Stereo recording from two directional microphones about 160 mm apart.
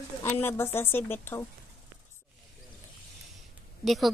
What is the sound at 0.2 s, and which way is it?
Speech, 15° left (ahead or behind).